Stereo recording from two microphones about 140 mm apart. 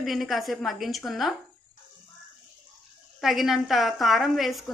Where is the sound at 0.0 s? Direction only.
Centre (ahead or behind).